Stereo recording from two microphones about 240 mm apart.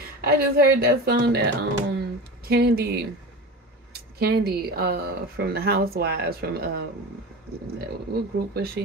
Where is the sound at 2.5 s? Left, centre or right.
Right.